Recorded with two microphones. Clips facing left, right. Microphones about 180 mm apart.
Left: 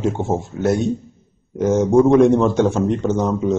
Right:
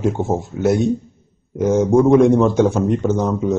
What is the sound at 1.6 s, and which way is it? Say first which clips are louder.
Speech: right 1 dB; 15° right (ahead or behind).